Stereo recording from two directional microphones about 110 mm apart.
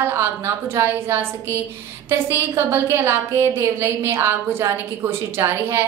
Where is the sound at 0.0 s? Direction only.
20° right (ahead or behind).